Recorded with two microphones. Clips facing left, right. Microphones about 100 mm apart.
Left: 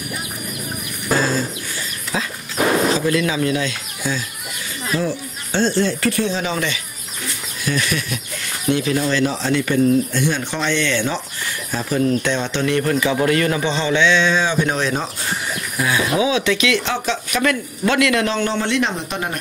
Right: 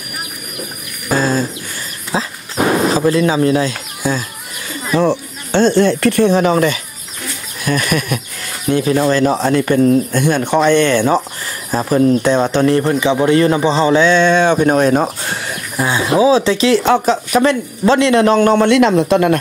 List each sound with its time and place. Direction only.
1.1 s a sound: 40° right (ahead or behind)
2.1 s dog: 30° right (ahead or behind)
3.1 s speech: 35° right (ahead or behind)
5.0 s speech: 70° right (ahead or behind); by 8.2 s 50° right (ahead or behind)
8.6 s speech: 35° right (ahead or behind)
13.0 s speech: 25° right (ahead or behind); by 15.0 s 50° right (ahead or behind)
15.8 s speech: 30° right (ahead or behind)
16.8 s speech: 45° right (ahead or behind)
18.3 s a man's voice: 50° right (ahead or behind); by 19.3 s 90° right